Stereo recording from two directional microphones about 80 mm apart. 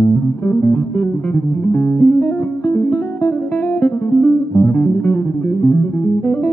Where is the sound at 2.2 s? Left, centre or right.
Left.